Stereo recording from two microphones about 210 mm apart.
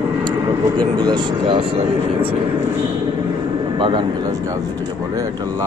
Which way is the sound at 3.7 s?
25° right (ahead or behind).